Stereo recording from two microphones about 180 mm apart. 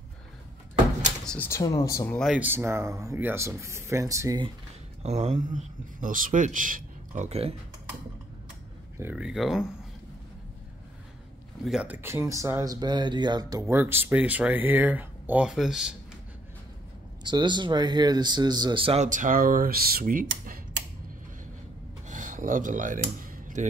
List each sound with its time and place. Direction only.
1.2 s speech: 5° left (ahead or behind)
1.5 s speech: 20° left (ahead or behind)
2.0 s speech: 5° left (ahead or behind)
2.3 s speech: 10° right (ahead or behind)
5.0 s speech: 40° right (ahead or behind)
8.9 s speech: 10° right (ahead or behind)
11.6 s speech: 5° right (ahead or behind)
17.2 s speech: 25° right (ahead or behind)
19.0 s speech: 45° right (ahead or behind)
22.0 s a sound: 45° right (ahead or behind)